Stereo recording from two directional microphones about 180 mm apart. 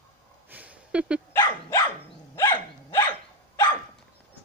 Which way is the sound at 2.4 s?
15° left (ahead or behind).